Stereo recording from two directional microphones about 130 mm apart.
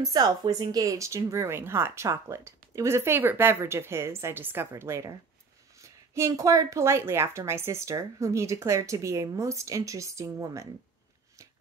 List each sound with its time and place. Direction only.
0.0 s speech: 30° right (ahead or behind)